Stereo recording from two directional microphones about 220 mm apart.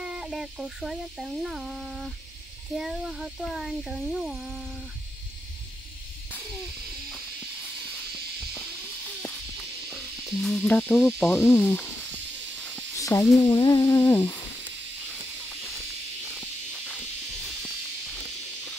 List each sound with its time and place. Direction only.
0.0 s speech: 5° right (ahead or behind)
10.4 s speech: centre (ahead or behind)
11.1 s cricket: 10° left (ahead or behind)
12.9 s snake: 15° left (ahead or behind)
13.4 s humming: 20° left (ahead or behind)
13.7 s cricket: 10° left (ahead or behind)